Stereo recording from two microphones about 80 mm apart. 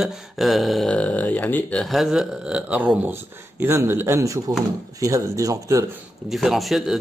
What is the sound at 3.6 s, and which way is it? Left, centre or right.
Speech, right.